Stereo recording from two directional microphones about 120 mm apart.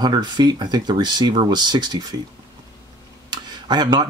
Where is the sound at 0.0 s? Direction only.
35° right (ahead or behind).